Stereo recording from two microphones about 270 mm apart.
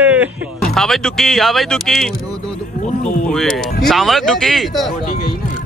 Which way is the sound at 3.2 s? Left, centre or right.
Centre.